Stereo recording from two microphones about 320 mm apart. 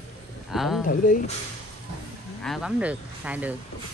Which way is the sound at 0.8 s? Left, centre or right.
Left.